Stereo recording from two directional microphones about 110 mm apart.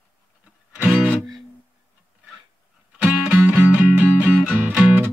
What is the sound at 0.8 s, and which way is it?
Music, 10° right (ahead or behind).